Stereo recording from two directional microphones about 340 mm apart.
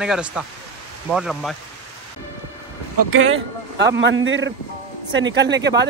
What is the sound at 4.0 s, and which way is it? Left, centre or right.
Speech, right.